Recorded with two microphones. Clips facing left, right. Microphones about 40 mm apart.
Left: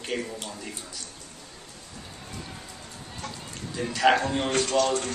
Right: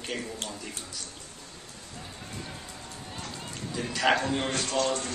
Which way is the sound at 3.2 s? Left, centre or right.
Centre.